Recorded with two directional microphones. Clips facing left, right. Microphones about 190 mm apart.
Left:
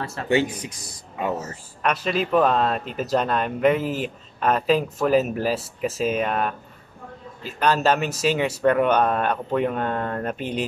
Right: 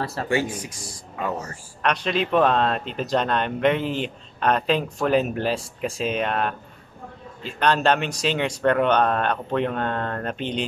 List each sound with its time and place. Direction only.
0.3 s speech: 20° left (ahead or behind)
1.8 s speech: 5° left (ahead or behind)